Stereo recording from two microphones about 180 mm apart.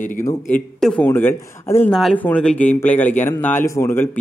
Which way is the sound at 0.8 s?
5° left (ahead or behind).